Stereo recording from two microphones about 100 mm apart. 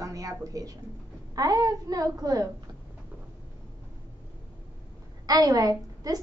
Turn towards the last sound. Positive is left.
turn(degrees=-40)  # may be behind; listen again after turning